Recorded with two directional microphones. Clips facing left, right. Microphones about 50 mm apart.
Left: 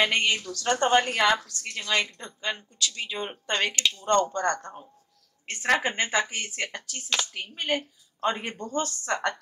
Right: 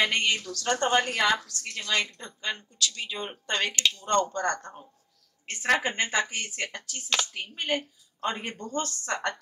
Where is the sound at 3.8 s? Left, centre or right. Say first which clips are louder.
Even; centre.